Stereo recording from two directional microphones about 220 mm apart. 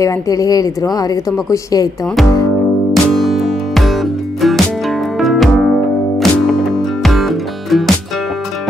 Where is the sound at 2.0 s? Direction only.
Centre (ahead or behind).